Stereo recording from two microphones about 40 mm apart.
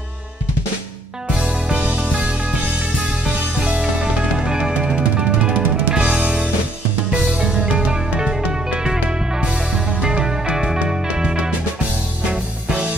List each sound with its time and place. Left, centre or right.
1.3 s music: right